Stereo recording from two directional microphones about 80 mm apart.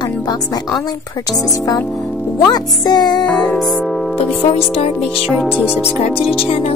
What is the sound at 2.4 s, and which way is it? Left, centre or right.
Speech, left.